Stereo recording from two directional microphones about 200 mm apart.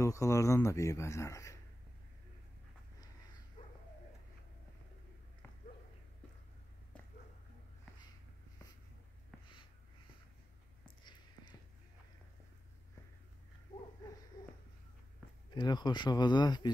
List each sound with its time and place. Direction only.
0.0 s speech: 15° left (ahead or behind)
3.6 s dog: 25° left (ahead or behind)
15.5 s speech: 20° left (ahead or behind)